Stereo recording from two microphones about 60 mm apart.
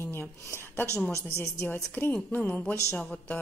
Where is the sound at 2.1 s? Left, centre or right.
Left.